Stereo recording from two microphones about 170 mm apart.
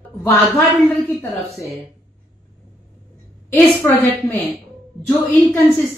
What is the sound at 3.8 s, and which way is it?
Speech, 10° left (ahead or behind).